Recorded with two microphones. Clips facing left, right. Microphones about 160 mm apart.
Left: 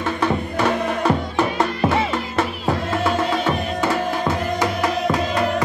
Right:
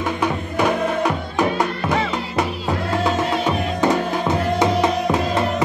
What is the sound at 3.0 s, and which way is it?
Music, 15° right (ahead or behind).